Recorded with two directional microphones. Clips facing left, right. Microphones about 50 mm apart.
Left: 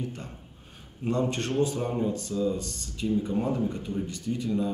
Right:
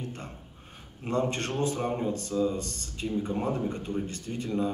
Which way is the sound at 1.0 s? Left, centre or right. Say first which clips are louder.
Left 1 dB; right.